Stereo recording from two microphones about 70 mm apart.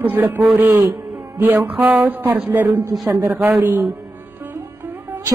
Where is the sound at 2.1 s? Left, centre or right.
Right.